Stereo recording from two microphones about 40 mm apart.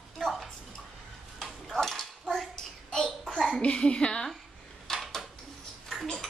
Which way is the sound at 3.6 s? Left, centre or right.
Left.